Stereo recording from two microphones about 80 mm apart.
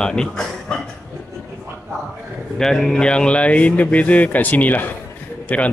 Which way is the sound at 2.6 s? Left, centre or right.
Centre.